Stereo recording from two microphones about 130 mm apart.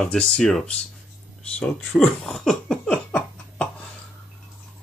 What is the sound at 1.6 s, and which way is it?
Laughter, 5° left (ahead or behind).